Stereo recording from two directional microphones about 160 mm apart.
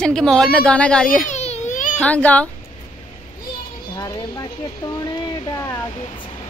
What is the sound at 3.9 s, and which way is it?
Speech, 25° left (ahead or behind).